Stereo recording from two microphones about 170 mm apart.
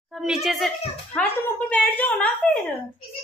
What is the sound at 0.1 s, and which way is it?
A child's voice, centre (ahead or behind).